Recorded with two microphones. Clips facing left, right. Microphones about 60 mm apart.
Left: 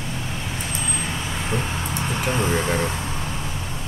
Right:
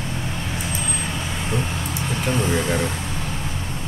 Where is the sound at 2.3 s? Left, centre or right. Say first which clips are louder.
Right 1 dB; left.